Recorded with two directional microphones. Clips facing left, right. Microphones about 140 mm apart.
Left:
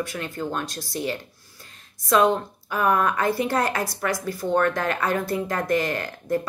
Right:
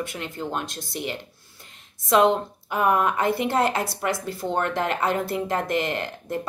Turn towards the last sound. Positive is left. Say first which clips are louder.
# left 3 dB
turn(degrees=-20)  # may be behind; listen again after turning